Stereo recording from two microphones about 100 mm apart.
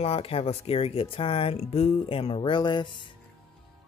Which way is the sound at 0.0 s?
80° left.